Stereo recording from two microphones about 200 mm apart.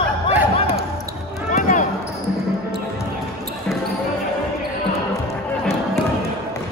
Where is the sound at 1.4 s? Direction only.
40° left (ahead or behind).